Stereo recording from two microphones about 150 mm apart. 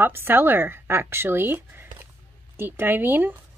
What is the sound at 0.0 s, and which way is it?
Speech, 15° right (ahead or behind).